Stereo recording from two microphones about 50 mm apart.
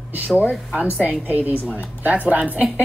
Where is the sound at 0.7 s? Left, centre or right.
Right.